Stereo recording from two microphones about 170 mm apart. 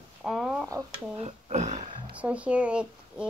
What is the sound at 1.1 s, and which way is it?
Speech, 40° right (ahead or behind).